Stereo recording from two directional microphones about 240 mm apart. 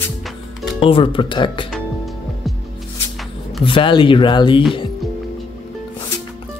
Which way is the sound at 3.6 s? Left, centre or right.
Left.